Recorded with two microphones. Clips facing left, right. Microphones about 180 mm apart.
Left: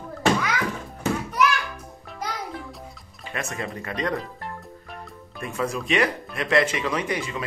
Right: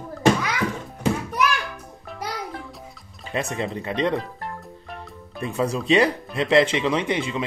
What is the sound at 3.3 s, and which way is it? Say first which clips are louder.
Speech: right 5 dB; 30° right (ahead or behind).